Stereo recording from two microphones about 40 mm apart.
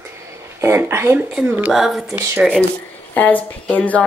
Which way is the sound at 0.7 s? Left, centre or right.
Right.